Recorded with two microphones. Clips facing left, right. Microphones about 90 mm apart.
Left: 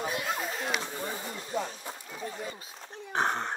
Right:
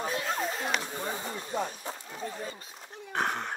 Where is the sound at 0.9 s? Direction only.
25° right (ahead or behind).